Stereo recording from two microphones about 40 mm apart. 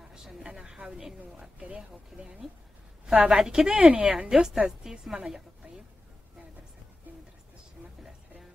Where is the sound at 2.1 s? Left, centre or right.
Centre.